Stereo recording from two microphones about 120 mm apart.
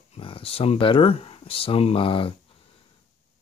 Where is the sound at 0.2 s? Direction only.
50° left (ahead or behind).